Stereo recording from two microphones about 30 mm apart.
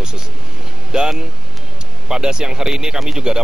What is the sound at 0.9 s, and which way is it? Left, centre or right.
Speech, right.